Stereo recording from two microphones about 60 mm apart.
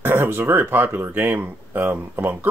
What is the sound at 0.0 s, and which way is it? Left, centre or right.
Speech, right.